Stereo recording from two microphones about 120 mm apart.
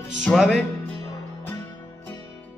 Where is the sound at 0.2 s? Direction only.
5° left (ahead or behind).